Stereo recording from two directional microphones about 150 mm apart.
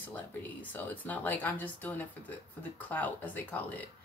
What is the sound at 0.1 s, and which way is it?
Speech, 10° left (ahead or behind).